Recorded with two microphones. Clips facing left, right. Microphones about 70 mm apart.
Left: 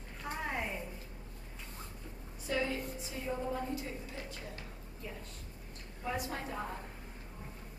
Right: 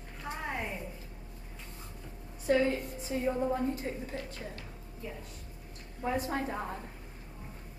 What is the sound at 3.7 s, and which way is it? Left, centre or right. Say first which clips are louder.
Speech: right 3 dB; right.